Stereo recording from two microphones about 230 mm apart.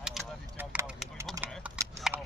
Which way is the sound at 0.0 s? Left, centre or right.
Centre.